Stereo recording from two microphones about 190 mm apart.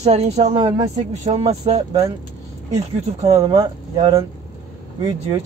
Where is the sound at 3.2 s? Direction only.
20° right (ahead or behind).